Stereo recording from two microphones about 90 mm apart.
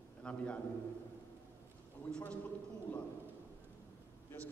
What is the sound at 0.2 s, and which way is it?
Speech, 15° left (ahead or behind).